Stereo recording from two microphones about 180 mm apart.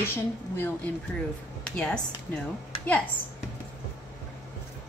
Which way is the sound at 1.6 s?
5° left (ahead or behind).